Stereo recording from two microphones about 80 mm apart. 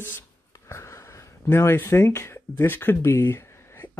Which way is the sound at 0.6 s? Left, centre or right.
Left.